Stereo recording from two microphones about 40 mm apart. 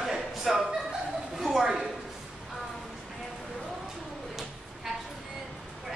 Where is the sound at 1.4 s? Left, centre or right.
Centre.